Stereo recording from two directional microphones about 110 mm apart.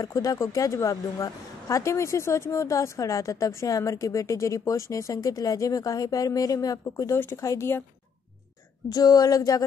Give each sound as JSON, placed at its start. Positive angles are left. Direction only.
{"t": 0.0, "sound": "speech", "side_deg": 35}
{"t": 8.8, "sound": "speech", "side_deg": 35}